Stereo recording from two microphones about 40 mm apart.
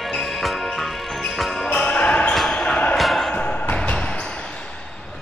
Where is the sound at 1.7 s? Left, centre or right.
Left.